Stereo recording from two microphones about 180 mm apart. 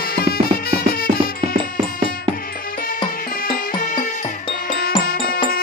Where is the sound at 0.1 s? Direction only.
55° left (ahead or behind).